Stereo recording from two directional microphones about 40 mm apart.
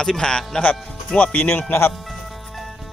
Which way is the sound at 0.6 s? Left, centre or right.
Left.